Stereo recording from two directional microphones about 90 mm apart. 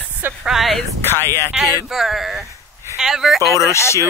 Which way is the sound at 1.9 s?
5° right (ahead or behind).